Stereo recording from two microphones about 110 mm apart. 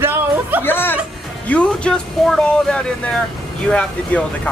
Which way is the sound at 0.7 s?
20° left (ahead or behind).